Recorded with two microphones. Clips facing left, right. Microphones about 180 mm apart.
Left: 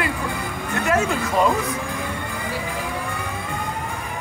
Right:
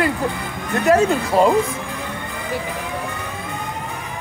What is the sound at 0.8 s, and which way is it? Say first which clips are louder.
Speech: right 6 dB; 35° right (ahead or behind).